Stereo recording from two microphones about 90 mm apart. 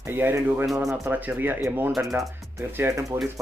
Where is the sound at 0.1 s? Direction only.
25° right (ahead or behind).